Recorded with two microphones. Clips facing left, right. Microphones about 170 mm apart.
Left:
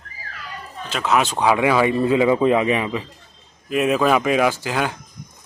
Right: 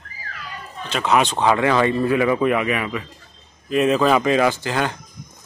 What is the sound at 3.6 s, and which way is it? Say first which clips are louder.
Speech: right 1 dB; 5° left (ahead or behind).